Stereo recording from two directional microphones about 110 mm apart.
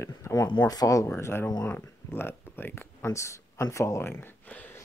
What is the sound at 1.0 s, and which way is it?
Speech, 20° left (ahead or behind).